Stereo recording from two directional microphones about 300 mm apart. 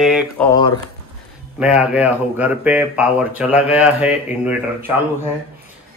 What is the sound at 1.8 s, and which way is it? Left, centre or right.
Speech, centre.